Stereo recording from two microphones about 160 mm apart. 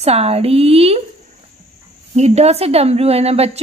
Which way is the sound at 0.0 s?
40° right (ahead or behind).